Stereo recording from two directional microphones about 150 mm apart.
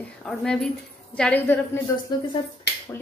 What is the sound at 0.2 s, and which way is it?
A woman's voice, 5° left (ahead or behind).